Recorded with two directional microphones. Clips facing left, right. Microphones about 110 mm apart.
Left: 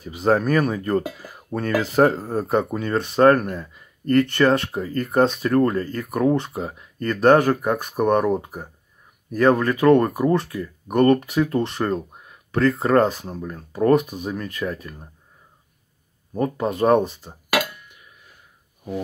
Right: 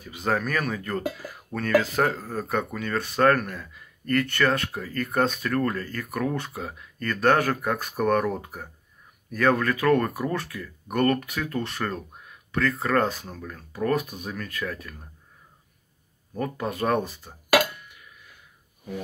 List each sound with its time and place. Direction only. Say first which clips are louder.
0.0 s speech: left 7 dB; 30° left (ahead or behind)
16.3 s speech: left 6 dB; 25° left (ahead or behind)